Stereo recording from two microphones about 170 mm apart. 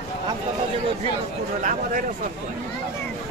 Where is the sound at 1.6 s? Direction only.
50° right (ahead or behind).